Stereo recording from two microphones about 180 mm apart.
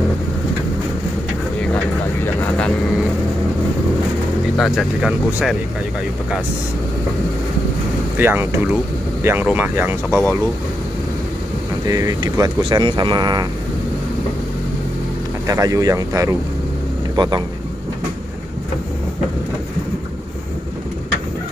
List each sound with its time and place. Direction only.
2.2 s vehicle: 5° left (ahead or behind)
4.6 s speech: centre (ahead or behind)
8.2 s speech: 10° right (ahead or behind)
11.8 s speech: 20° right (ahead or behind)
15.4 s speech: 20° right (ahead or behind)